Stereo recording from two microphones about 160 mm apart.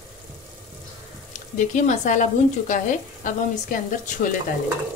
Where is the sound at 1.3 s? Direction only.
50° left (ahead or behind).